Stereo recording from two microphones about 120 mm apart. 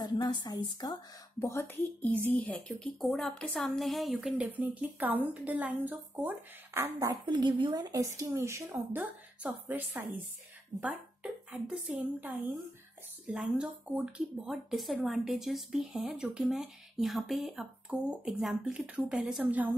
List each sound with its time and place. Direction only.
0.0 s speech: 35° left (ahead or behind)
1.4 s speech: 20° left (ahead or behind)
3.0 s speech: centre (ahead or behind); by 7.2 s 25° right (ahead or behind)
7.2 s speech: 40° right (ahead or behind); by 10.2 s 15° right (ahead or behind)
11.5 s speech: 10° right (ahead or behind)